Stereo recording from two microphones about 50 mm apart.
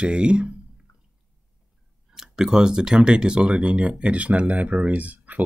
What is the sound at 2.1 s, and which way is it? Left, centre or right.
Speech, centre.